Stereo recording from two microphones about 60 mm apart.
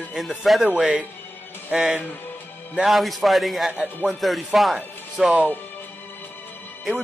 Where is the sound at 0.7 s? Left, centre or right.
Centre.